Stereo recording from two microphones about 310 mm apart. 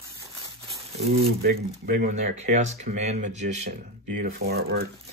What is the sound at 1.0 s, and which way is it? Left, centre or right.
Speech, right.